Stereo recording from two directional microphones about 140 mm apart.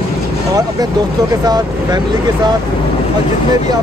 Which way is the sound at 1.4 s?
30° right (ahead or behind).